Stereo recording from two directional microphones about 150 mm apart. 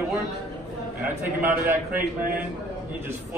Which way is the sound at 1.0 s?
15° right (ahead or behind).